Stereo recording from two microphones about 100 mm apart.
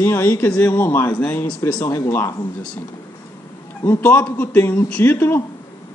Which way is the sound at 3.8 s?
20° left (ahead or behind).